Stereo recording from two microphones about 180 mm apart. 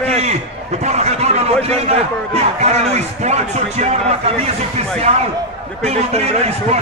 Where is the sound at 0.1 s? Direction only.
35° right (ahead or behind).